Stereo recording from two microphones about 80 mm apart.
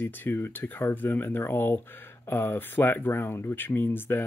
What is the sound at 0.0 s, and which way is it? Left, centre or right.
Speech, left.